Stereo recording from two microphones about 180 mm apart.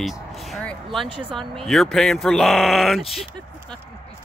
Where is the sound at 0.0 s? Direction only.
Centre (ahead or behind).